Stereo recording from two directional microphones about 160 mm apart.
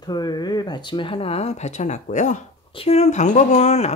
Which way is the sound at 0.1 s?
25° left (ahead or behind).